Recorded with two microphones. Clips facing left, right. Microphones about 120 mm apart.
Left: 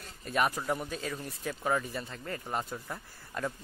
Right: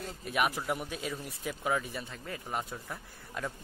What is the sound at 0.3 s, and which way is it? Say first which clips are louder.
Speech: left 1 dB; 5° right (ahead or behind).